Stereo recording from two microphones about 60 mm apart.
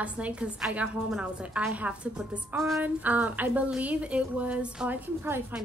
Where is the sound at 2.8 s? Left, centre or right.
Right.